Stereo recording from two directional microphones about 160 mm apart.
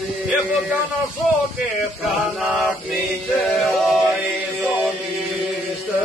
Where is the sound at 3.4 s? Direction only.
Centre (ahead or behind).